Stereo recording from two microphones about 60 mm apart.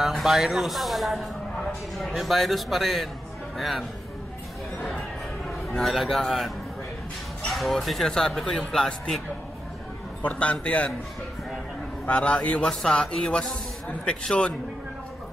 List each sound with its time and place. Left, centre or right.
0.0 s speech: centre
5.8 s speech: centre
7.5 s speech: centre
10.2 s a man's voice: left
12.1 s a man's voice: left
12.6 s speech: centre